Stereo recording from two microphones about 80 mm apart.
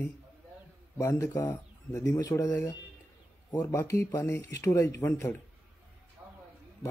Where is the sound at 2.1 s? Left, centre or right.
Left.